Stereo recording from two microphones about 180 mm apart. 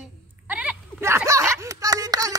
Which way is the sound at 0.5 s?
5° right (ahead or behind).